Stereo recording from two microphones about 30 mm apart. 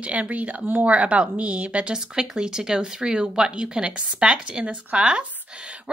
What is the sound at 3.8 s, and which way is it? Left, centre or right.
A woman's voice, right.